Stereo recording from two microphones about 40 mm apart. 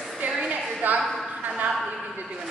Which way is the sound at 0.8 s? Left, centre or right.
Right.